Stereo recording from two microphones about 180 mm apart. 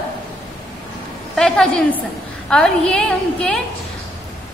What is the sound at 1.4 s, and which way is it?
A woman's voice, 5° left (ahead or behind).